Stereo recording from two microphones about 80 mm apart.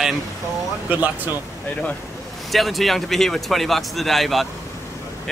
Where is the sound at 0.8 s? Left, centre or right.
Centre.